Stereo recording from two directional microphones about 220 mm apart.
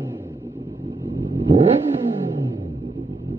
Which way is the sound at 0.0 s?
10° right (ahead or behind).